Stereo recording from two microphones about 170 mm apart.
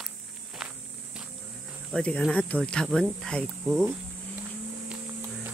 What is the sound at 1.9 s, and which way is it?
Speech, 5° left (ahead or behind).